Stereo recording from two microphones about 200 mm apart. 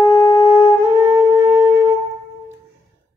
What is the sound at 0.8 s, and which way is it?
Music, 15° right (ahead or behind).